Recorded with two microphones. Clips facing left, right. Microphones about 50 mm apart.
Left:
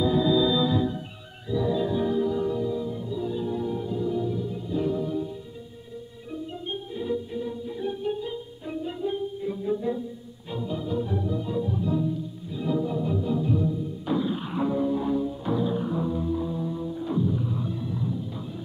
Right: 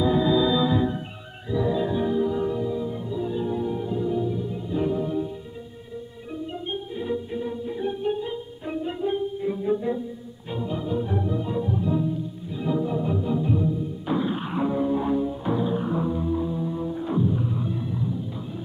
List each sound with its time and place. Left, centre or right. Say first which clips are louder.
0.0 s organ: right 1 dB; right
1.5 s music: right 1 dB; right
6.7 s music: even; right
14.2 s a sound: right 2 dB; right
14.6 s music: right 1 dB; right
16.7 s music: right 2 dB; right